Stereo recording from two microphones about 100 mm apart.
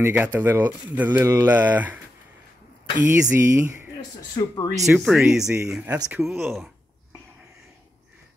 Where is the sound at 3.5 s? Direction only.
25° right (ahead or behind).